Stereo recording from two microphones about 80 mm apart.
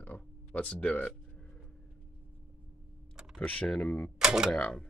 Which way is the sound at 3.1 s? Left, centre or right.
Centre.